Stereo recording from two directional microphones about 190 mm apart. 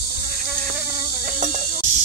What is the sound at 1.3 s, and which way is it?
Music, 40° right (ahead or behind).